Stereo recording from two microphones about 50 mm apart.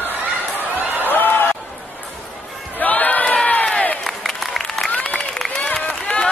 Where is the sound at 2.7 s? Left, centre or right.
Left.